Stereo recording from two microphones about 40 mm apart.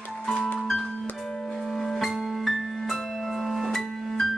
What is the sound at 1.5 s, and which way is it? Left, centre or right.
Music, centre.